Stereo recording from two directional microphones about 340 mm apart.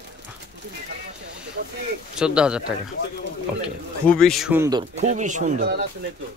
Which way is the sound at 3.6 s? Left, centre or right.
Centre.